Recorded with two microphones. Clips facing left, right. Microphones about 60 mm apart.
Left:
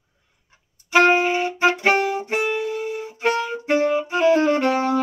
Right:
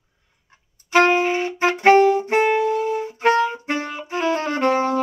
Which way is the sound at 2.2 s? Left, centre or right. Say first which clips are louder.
Right 5 dB; right.